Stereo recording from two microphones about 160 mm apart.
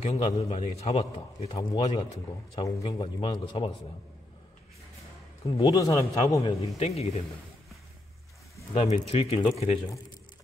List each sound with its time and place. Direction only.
0.0 s a man's voice: 40° left (ahead or behind)
1.6 s a man's voice: 25° left (ahead or behind)
5.5 s a man's voice: 35° left (ahead or behind)
5.8 s a man's voice: 20° left (ahead or behind)
6.4 s a man's voice: 40° left (ahead or behind)
8.7 s a man's voice: 40° left (ahead or behind)